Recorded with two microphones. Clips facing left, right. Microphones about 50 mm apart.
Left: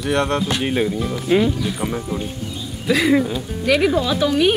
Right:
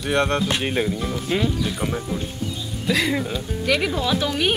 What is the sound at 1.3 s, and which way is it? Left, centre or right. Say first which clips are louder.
A woman's voice: left 6 dB; centre.